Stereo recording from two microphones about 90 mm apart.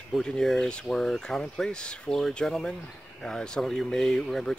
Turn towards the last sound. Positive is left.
turn(degrees=5)  # may be behind; listen again after turning